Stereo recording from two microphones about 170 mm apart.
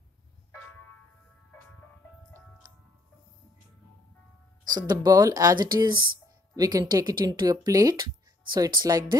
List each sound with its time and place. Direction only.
4.7 s speech: 25° right (ahead or behind)